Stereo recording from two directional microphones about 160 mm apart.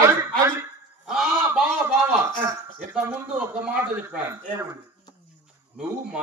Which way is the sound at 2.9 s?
5° right (ahead or behind).